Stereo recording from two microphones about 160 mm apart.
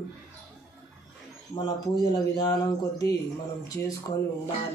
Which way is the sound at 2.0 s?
25° left (ahead or behind).